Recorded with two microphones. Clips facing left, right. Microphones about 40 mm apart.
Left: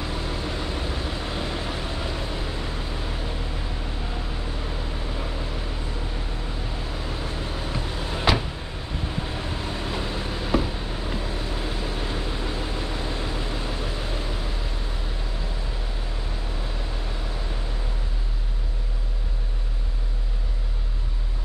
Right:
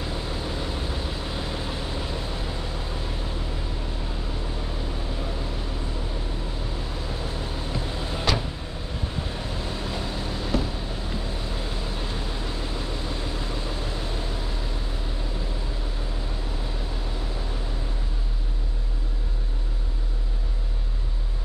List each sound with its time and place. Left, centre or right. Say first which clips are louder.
0.0 s vehicle: left 1 dB; centre
7.7 s vehicle: left 1 dB; left
9.4 s a sound: left 1 dB; left